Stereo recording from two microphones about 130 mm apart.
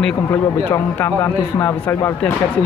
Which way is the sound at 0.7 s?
20° left (ahead or behind).